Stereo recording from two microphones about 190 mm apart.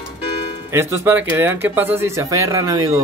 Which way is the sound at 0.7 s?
15° right (ahead or behind).